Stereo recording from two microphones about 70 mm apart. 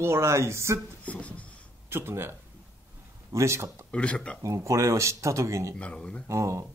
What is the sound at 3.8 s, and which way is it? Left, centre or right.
Speech, centre.